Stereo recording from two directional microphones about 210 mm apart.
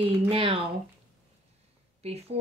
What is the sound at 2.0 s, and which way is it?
Speech, 30° right (ahead or behind).